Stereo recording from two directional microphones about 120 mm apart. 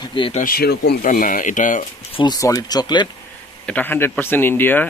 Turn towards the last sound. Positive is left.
turn(degrees=15)  # may be behind; listen again after turning